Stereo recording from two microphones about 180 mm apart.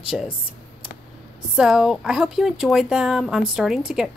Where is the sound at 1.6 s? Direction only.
Centre (ahead or behind).